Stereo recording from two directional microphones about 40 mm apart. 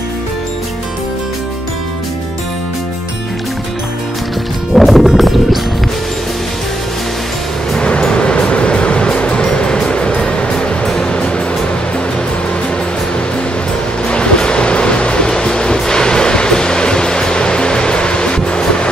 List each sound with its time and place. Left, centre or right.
4.7 s music: centre
7.7 s music: left
14.0 s music: left